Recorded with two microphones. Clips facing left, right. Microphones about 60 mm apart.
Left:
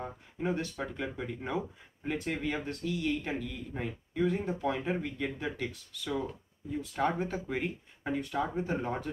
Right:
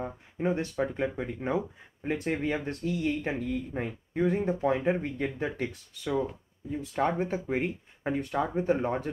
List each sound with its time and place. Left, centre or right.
0.4 s speech: right